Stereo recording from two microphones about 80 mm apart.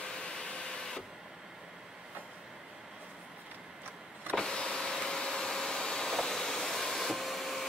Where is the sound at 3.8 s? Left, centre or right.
Right.